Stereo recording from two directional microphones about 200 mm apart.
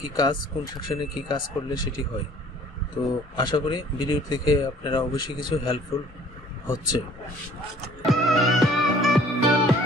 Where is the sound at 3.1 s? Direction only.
20° left (ahead or behind).